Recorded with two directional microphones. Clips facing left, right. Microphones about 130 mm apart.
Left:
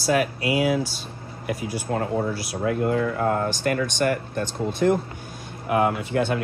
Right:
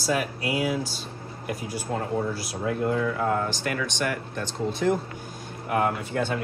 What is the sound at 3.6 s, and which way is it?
Speech, 45° left (ahead or behind).